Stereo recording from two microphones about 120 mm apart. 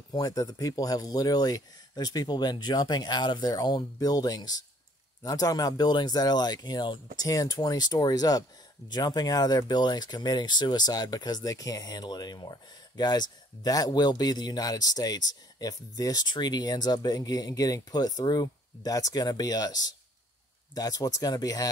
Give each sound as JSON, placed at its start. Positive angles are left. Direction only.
{"t": 0.1, "sound": "speech", "side_deg": 30}